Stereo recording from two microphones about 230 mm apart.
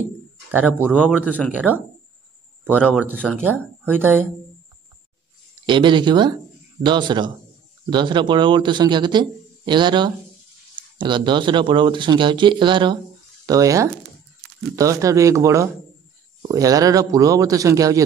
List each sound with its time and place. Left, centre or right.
0.5 s speech: centre
1.5 s speech: centre
2.6 s speech: centre
3.8 s speech: centre
5.7 s a man's voice: right